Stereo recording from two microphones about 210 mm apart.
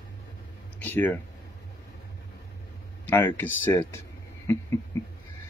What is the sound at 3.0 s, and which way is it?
Speech, 10° left (ahead or behind).